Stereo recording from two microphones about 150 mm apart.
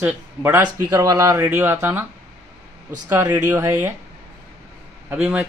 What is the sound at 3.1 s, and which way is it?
Speech, 20° right (ahead or behind).